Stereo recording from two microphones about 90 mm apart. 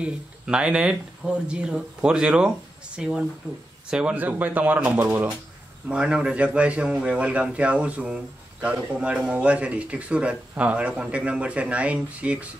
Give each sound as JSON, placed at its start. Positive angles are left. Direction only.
{"t": 0.0, "sound": "a man's voice", "side_deg": -10}